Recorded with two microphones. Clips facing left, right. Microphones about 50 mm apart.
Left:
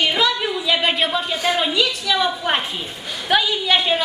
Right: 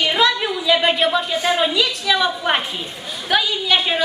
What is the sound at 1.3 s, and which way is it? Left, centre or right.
Speech, right.